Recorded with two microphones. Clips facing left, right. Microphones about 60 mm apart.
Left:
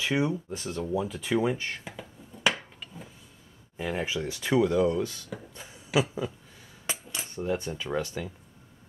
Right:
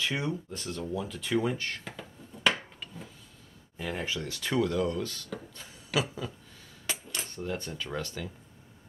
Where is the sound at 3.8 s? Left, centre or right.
Centre.